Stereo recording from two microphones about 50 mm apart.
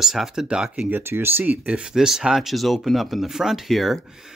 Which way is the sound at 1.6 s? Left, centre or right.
Centre.